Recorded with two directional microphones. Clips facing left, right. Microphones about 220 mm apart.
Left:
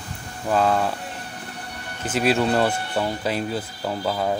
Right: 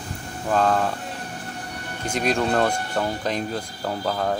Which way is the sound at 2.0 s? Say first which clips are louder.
Left 2 dB; 5° left (ahead or behind).